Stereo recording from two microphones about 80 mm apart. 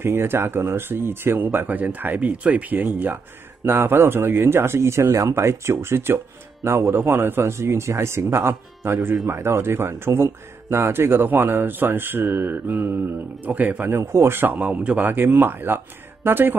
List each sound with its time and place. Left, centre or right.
0.0 s speech: right